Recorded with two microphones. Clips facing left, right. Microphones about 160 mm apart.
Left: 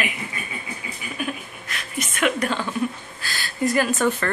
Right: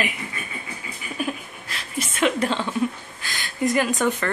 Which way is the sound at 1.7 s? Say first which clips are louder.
Even; 30° right (ahead or behind).